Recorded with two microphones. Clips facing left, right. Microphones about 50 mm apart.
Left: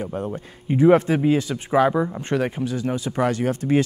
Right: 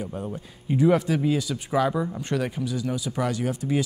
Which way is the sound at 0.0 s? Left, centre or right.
Left.